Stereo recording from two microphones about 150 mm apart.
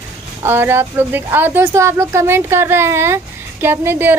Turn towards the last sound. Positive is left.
turn(degrees=-15)  # may be behind; listen again after turning